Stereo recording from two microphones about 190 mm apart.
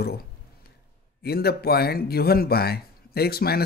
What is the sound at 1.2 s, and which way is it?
Speech, 55° left (ahead or behind).